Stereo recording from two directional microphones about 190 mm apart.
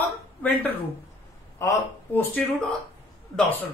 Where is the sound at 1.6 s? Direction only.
15° left (ahead or behind).